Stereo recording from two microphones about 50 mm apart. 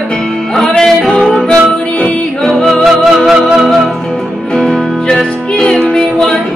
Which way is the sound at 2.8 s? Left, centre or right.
Centre.